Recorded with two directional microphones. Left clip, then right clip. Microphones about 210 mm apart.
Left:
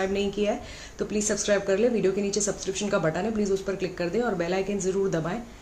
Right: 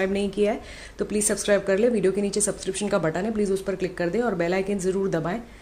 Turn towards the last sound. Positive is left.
turn(degrees=-25)  # may be behind; listen again after turning